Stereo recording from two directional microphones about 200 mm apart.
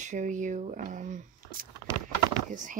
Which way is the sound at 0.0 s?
40° right (ahead or behind).